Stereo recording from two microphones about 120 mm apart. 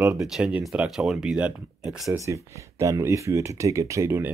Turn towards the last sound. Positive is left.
turn(degrees=-20)  # may be behind; listen again after turning